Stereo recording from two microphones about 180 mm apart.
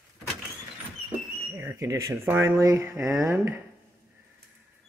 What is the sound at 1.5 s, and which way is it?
Speech, 15° right (ahead or behind).